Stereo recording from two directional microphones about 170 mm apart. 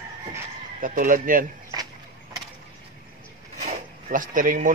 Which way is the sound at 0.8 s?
55° right (ahead or behind).